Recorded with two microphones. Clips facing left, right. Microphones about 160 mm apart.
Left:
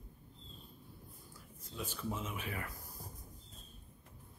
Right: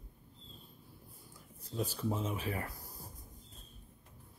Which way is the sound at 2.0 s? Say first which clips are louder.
Right 3 dB; 35° right (ahead or behind).